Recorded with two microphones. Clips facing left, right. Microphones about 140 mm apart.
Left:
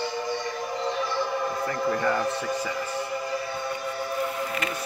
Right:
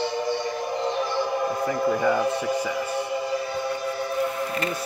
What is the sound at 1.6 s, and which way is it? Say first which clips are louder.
Speech: right 3 dB; 10° right (ahead or behind).